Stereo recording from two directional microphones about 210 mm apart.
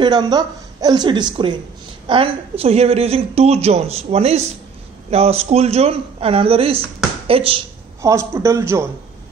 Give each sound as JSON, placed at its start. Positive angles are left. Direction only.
{"t": 0.0, "sound": "a woman's voice", "side_deg": -20}
{"t": 8.0, "sound": "a man's voice", "side_deg": -15}